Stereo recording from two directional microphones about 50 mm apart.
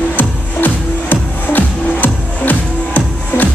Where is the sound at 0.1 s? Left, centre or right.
Left.